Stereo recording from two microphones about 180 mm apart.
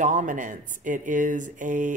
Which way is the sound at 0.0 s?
45° right (ahead or behind).